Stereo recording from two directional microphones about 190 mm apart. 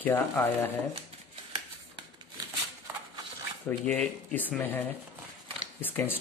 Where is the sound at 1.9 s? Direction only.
25° right (ahead or behind).